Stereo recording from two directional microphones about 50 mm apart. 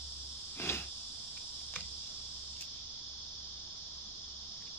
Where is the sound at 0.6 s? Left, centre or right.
Left.